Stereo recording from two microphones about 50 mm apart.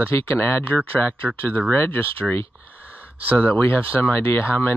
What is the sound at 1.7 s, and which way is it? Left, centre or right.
Speech, left.